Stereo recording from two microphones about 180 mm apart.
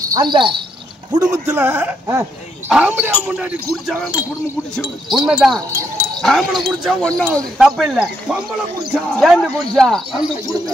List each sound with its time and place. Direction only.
0.1 s speech: 25° right (ahead or behind)
1.6 s speech: 10° right (ahead or behind)